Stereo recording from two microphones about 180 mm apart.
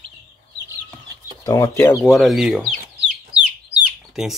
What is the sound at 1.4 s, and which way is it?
Speech, 20° left (ahead or behind).